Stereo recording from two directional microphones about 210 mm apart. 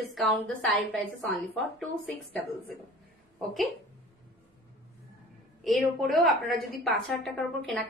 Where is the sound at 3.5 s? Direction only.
Centre (ahead or behind).